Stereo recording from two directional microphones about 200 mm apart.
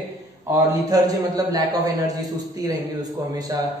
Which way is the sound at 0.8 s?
20° right (ahead or behind).